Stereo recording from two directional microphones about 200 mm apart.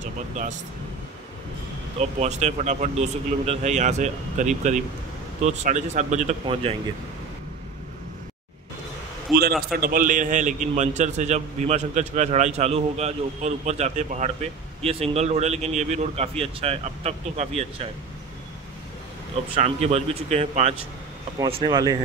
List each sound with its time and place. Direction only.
0.0 s speech: 40° right (ahead or behind)
2.0 s a man's voice: 35° right (ahead or behind)
9.8 s a man's voice: 45° right (ahead or behind)
19.5 s a man's voice: 30° right (ahead or behind)